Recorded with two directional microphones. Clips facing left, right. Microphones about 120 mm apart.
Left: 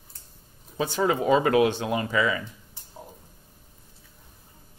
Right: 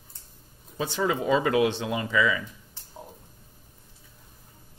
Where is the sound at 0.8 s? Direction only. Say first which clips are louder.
Left 3 dB; 50° left (ahead or behind).